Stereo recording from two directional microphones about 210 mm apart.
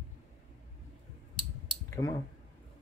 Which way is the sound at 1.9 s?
15° left (ahead or behind).